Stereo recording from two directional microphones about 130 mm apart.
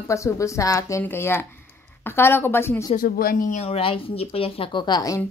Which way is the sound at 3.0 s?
90° left.